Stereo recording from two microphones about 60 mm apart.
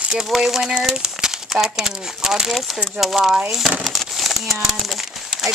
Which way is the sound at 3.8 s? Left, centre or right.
Centre.